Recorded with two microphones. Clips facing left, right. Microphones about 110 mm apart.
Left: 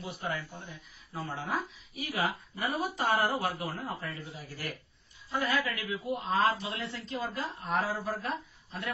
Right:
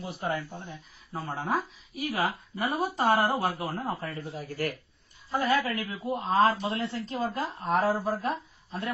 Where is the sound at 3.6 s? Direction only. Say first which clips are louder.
Right 4 dB; 50° right (ahead or behind).